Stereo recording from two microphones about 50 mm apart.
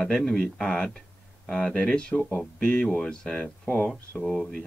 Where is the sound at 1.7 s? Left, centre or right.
Centre.